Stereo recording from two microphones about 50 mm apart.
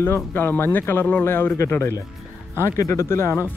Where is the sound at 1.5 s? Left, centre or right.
Left.